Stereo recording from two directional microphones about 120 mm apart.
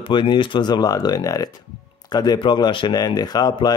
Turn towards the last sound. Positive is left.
turn(degrees=35)  # may be behind; listen again after turning